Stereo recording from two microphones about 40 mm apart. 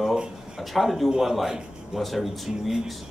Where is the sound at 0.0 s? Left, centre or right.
Centre.